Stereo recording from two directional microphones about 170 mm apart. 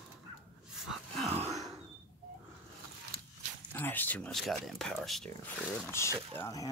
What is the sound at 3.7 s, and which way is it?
Speech, 10° left (ahead or behind).